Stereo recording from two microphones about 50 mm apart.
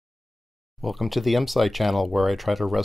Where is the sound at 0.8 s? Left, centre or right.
Centre.